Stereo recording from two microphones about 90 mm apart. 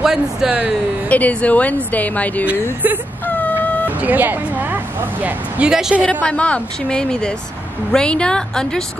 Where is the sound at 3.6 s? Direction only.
20° left (ahead or behind).